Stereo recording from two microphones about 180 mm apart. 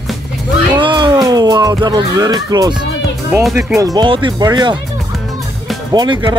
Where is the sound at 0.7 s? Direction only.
25° right (ahead or behind).